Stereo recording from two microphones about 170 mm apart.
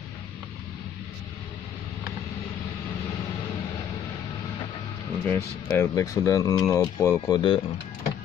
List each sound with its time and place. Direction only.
5.2 s speech: 15° left (ahead or behind)